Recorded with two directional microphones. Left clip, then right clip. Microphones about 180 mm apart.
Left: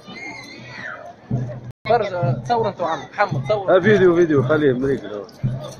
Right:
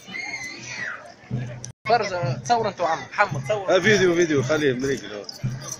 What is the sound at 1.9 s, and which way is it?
Speech, 45° right (ahead or behind).